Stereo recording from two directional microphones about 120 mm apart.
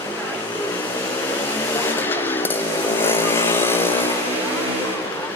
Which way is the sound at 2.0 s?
15° left (ahead or behind).